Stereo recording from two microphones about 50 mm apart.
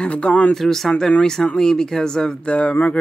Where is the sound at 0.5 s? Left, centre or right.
Centre.